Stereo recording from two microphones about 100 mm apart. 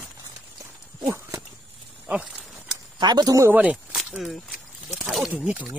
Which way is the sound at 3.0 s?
45° right (ahead or behind).